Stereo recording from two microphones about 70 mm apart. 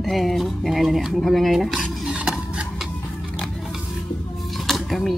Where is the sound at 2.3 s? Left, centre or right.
Centre.